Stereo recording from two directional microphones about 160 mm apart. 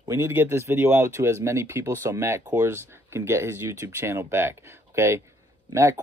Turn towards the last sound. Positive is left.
turn(degrees=-15)  # may be behind; listen again after turning